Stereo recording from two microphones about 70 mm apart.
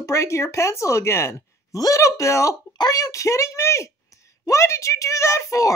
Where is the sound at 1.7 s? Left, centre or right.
Left.